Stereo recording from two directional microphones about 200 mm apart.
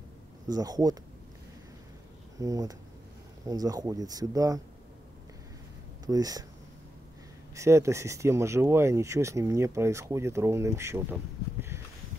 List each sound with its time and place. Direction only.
0.5 s speech: 20° right (ahead or behind)
2.3 s speech: 15° right (ahead or behind)
6.0 s speech: 20° right (ahead or behind)
7.5 s speech: 15° right (ahead or behind)